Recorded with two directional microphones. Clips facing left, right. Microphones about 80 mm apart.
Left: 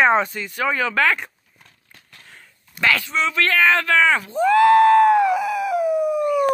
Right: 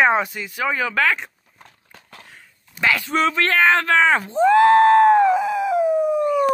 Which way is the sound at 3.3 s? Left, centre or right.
Right.